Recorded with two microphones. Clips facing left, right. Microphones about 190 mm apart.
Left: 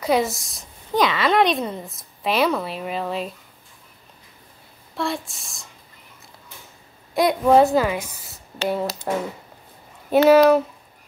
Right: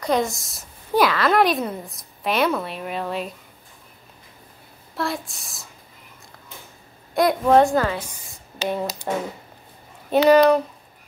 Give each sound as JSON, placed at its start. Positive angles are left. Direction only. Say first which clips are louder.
{"t": 0.0, "sound": "a woman's voice", "louder": "left 1 dB", "side_deg": 5}
{"t": 4.9, "sound": "a woman's voice", "louder": "left 1 dB", "side_deg": 0}
{"t": 7.2, "sound": "a woman's voice", "louder": "left 1 dB", "side_deg": 0}